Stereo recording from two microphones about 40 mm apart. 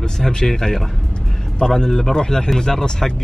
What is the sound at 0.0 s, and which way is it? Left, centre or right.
A man's voice, centre.